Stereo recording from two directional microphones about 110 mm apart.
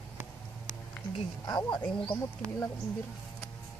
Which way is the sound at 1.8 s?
15° left (ahead or behind).